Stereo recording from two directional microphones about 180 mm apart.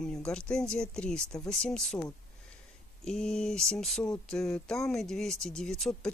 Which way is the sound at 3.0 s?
5° left (ahead or behind).